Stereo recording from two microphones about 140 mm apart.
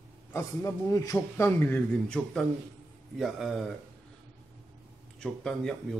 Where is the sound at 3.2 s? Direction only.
5° right (ahead or behind).